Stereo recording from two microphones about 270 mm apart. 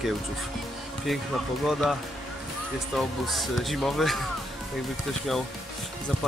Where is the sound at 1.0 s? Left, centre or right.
Centre.